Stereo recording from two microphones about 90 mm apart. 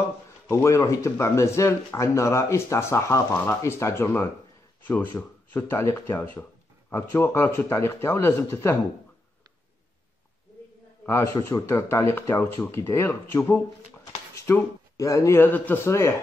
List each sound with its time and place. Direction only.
0.5 s speech: 35° left (ahead or behind)
11.4 s speech: 30° left (ahead or behind)
15.8 s speech: 30° left (ahead or behind)